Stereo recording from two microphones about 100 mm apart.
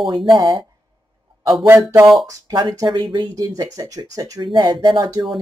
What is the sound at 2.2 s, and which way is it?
Speech, 45° right (ahead or behind).